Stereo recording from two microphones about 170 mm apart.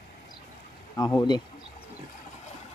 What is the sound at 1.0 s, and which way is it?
Speech, 15° left (ahead or behind).